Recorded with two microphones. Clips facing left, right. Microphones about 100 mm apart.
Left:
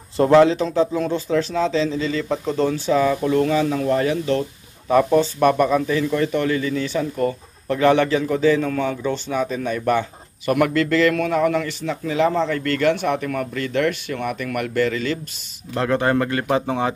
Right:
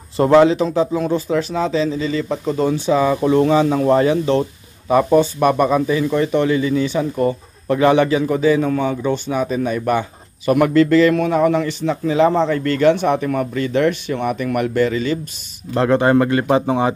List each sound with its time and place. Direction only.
0.2 s speech: 5° right (ahead or behind)
2.7 s speech: 20° right (ahead or behind)
4.8 s speech: 15° right (ahead or behind)
15.7 s speech: 25° right (ahead or behind)